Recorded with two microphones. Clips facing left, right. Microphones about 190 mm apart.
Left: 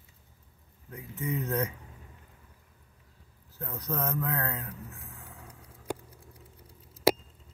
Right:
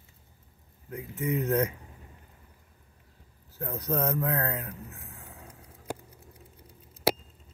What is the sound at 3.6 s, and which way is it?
Speech, 30° right (ahead or behind).